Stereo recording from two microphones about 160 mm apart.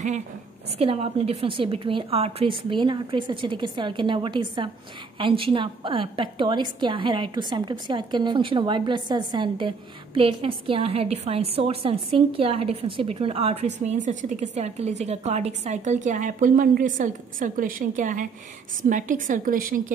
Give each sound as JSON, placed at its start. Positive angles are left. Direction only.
{"t": 0.7, "sound": "a woman's voice", "side_deg": -35}